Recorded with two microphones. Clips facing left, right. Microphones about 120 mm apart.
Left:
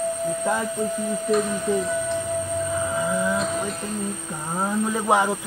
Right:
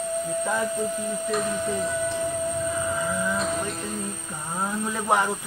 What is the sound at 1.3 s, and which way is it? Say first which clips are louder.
Speech: left 5 dB; centre (ahead or behind).